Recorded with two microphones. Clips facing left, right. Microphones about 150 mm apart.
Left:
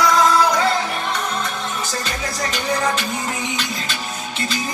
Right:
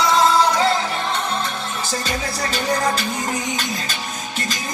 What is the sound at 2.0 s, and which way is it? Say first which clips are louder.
Music: right 1 dB; 35° right (ahead or behind).